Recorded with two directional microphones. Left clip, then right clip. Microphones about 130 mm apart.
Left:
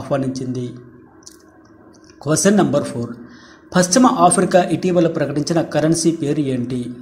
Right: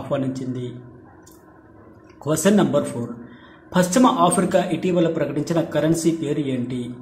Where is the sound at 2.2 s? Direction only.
25° left (ahead or behind).